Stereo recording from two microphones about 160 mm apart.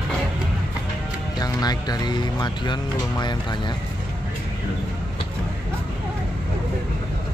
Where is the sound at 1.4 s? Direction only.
25° left (ahead or behind).